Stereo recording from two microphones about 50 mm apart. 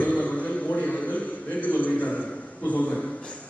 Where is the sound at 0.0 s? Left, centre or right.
Left.